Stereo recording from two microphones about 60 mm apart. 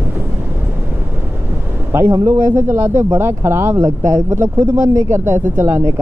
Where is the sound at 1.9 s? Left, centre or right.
Right.